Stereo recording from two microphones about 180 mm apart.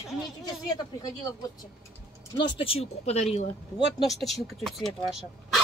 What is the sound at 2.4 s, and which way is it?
Speech, 30° left (ahead or behind).